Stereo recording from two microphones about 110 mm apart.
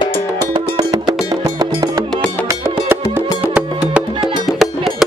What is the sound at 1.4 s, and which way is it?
Music, 30° right (ahead or behind).